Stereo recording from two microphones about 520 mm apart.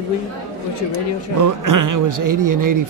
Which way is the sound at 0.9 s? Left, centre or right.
Right.